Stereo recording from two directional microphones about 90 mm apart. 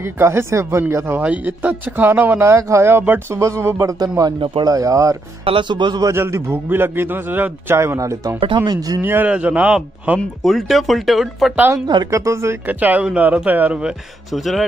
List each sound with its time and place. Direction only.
0.0 s a man's voice: 30° right (ahead or behind)
4.2 s speech: 45° right (ahead or behind)
5.4 s speech: 70° right (ahead or behind)
6.0 s a man's voice: 30° right (ahead or behind)
8.4 s speech: 70° right (ahead or behind)
8.6 s speech: 45° right (ahead or behind)
9.0 s a man's voice: 20° right (ahead or behind); by 11.5 s centre (ahead or behind)
12.1 s speech: 35° right (ahead or behind)
12.6 s speech: 20° right (ahead or behind)
14.3 s speech: centre (ahead or behind)